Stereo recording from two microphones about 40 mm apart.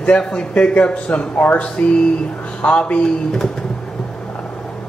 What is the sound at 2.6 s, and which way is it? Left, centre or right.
Speech, left.